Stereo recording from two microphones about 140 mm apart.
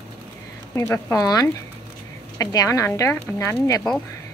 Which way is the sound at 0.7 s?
20° left (ahead or behind).